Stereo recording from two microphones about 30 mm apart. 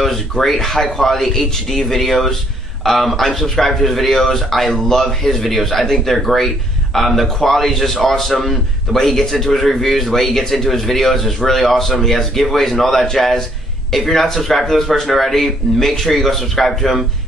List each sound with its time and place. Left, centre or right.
0.1 s speech: centre
0.6 s speech: centre
5.2 s speech: centre